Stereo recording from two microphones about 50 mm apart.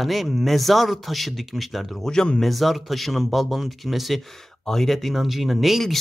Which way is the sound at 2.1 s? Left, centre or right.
Centre.